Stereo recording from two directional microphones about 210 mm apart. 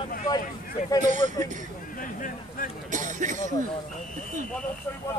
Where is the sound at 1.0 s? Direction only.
35° right (ahead or behind).